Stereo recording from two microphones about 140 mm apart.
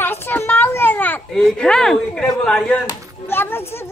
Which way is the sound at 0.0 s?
15° left (ahead or behind).